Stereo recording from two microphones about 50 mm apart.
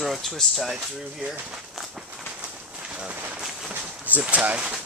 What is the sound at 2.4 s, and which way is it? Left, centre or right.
Bird, right.